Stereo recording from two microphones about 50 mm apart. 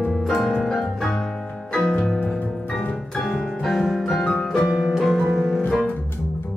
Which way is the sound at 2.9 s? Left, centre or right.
Centre.